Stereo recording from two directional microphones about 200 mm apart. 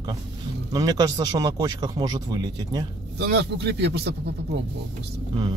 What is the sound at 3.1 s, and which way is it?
Speech, 55° right (ahead or behind).